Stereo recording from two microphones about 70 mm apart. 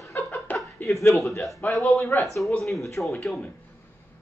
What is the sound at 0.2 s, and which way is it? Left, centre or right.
Chuckle, left.